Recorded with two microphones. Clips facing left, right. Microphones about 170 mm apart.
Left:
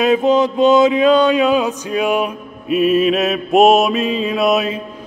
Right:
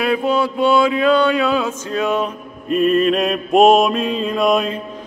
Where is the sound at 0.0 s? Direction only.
20° left (ahead or behind).